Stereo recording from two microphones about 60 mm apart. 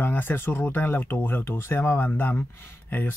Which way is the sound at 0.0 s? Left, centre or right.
Left.